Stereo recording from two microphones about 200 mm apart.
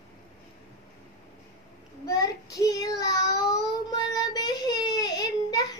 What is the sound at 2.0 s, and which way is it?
Child singing, 20° left (ahead or behind).